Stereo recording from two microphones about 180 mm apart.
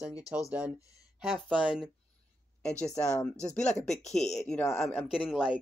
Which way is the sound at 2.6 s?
5° left (ahead or behind).